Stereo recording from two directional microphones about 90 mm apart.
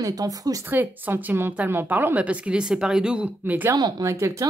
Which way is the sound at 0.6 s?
20° right (ahead or behind).